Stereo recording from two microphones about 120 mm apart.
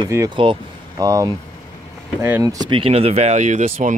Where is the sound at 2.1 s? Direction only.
15° right (ahead or behind).